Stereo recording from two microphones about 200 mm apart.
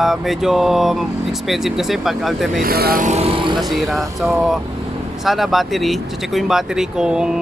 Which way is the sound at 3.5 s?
Centre (ahead or behind).